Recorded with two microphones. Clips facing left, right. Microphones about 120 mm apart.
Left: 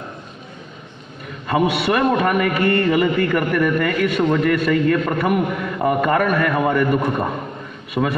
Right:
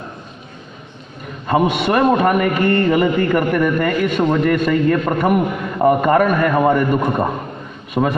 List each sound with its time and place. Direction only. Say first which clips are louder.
1.5 s a man's voice: right 2 dB; 25° right (ahead or behind)